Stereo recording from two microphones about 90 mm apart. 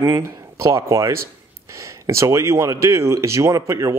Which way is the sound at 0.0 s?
35° right (ahead or behind).